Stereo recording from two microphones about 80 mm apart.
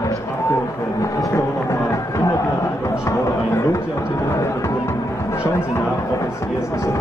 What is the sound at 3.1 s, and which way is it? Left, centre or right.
Run, left.